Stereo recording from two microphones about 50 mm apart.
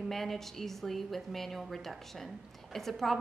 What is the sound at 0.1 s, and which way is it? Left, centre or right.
A woman's voice, centre.